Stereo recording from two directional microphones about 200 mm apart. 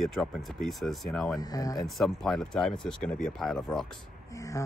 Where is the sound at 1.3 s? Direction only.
20° left (ahead or behind).